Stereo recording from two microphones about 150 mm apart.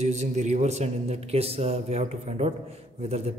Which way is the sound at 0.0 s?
50° right (ahead or behind).